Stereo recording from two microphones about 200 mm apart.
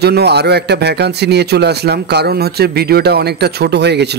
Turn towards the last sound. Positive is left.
turn(degrees=-55)  # may be behind; listen again after turning